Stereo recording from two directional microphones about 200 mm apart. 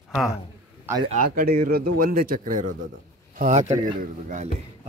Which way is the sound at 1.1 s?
45° right (ahead or behind).